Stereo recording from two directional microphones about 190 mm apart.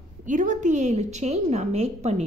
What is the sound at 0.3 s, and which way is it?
A woman's voice, 40° right (ahead or behind).